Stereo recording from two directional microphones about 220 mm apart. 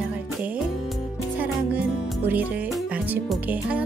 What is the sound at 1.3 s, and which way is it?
Speech, 5° right (ahead or behind).